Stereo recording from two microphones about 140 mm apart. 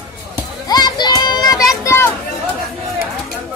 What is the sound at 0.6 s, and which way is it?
Children playing, 30° left (ahead or behind).